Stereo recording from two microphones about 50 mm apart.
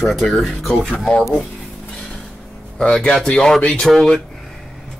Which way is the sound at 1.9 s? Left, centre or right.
Centre.